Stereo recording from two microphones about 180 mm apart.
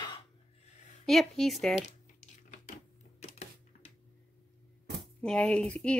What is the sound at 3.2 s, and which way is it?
Typewriter, 35° left (ahead or behind).